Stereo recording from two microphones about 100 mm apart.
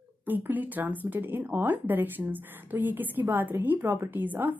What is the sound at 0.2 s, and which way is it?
Speech, 20° right (ahead or behind).